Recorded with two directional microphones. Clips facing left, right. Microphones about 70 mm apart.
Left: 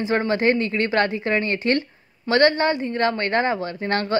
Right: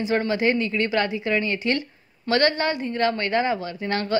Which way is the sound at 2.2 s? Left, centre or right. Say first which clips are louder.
Left 3 dB; left.